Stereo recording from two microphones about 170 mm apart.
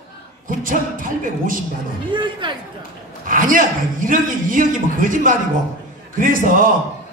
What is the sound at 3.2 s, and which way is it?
A man's voice, 50° right (ahead or behind).